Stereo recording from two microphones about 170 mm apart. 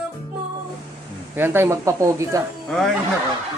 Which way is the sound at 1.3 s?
15° right (ahead or behind).